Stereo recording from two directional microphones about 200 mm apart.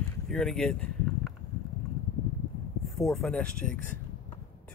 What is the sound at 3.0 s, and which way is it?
Speech, centre (ahead or behind).